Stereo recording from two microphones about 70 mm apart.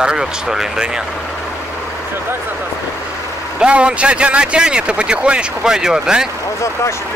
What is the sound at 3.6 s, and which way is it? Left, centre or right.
Speech, centre.